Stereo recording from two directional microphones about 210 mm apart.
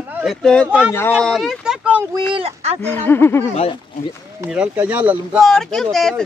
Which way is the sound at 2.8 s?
10° left (ahead or behind).